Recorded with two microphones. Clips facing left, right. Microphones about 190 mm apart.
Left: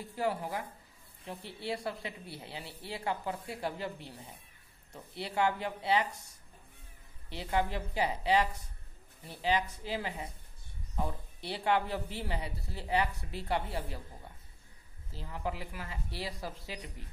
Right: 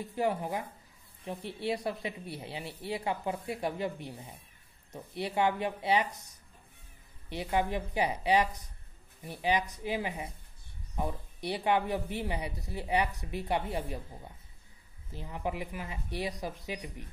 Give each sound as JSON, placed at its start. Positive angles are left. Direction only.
{"t": 0.0, "sound": "a woman's voice", "side_deg": -20}
{"t": 15.0, "sound": "a woman's voice", "side_deg": -20}